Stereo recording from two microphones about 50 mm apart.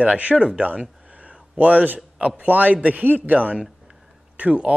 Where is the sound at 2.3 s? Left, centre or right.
Right.